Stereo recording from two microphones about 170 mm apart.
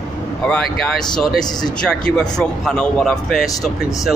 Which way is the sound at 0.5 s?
5° left (ahead or behind).